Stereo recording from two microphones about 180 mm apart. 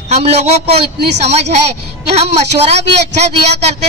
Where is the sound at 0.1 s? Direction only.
35° right (ahead or behind).